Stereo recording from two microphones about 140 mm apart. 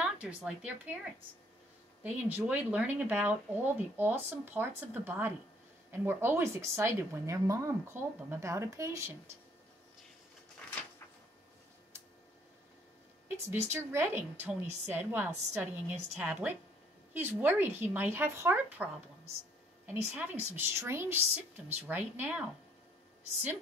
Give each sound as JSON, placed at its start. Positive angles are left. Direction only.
{"t": 0.0, "sound": "speech", "side_deg": -10}
{"t": 2.0, "sound": "speech", "side_deg": -10}
{"t": 13.5, "sound": "speech", "side_deg": -15}
{"t": 19.9, "sound": "speech", "side_deg": -15}